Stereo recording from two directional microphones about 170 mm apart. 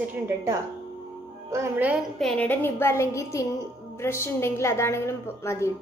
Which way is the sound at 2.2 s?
5° left (ahead or behind).